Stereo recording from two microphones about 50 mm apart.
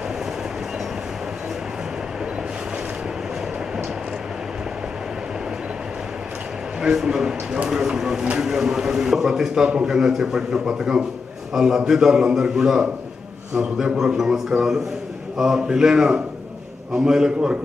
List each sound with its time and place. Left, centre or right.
6.8 s a man's voice: centre